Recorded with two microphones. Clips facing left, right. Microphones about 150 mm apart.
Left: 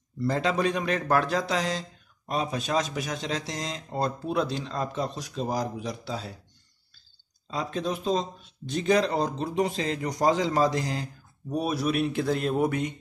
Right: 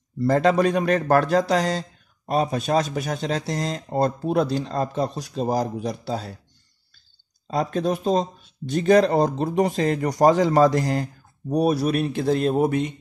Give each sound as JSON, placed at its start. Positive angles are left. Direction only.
{"t": 0.2, "sound": "a man's voice", "side_deg": -50}
{"t": 7.4, "sound": "a man's voice", "side_deg": -50}
{"t": 11.5, "sound": "speech", "side_deg": -40}